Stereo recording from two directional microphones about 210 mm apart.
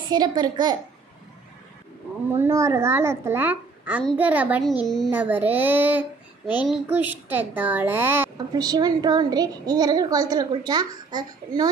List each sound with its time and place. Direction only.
0.1 s a woman's voice: 20° right (ahead or behind)
2.3 s a child's voice: 10° right (ahead or behind)
6.4 s a child's voice: 20° left (ahead or behind)
6.7 s a woman's voice: 10° right (ahead or behind)